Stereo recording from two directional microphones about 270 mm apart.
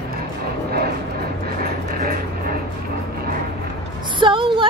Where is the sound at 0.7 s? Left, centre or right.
Right.